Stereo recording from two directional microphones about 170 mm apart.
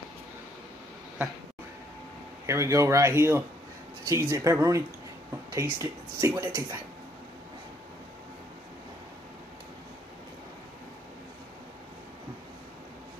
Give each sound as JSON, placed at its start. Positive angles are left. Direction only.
{"t": 2.4, "sound": "speech", "side_deg": -15}